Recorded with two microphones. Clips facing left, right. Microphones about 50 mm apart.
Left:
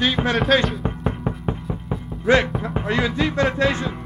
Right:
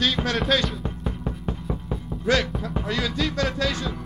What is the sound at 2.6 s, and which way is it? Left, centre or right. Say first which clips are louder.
Speech: left 5 dB; left.